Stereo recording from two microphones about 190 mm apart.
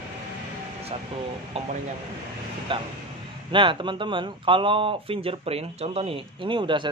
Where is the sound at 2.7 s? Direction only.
25° right (ahead or behind).